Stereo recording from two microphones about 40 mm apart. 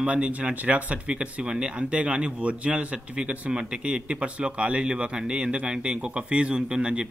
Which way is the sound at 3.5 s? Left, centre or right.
Centre.